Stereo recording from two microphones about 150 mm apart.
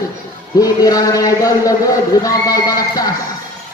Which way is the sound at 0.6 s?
25° left (ahead or behind).